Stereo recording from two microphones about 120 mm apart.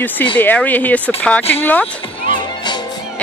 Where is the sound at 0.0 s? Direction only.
15° left (ahead or behind).